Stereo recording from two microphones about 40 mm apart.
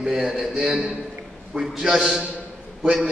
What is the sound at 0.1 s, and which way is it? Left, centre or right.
A man's voice, centre.